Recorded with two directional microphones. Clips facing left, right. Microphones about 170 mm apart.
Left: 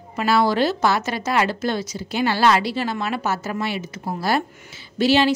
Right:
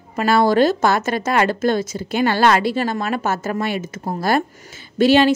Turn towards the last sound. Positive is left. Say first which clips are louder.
# right 4 dB
turn(degrees=-50)  # may be behind; listen again after turning